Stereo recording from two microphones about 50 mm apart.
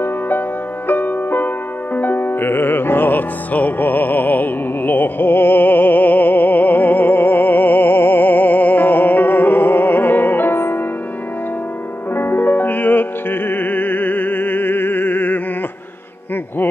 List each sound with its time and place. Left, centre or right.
0.8 s music: left
12.2 s music: left